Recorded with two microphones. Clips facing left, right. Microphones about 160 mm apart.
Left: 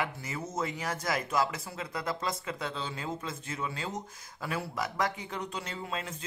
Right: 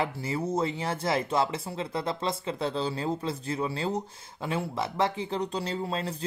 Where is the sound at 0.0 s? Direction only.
30° right (ahead or behind).